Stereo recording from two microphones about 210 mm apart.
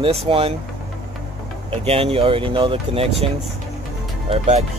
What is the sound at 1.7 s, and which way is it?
Speech, 30° right (ahead or behind).